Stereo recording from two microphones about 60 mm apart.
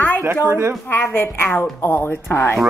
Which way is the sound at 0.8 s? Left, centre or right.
Left.